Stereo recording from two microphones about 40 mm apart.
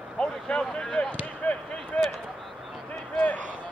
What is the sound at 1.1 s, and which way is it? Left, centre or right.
Basketball bounce, left.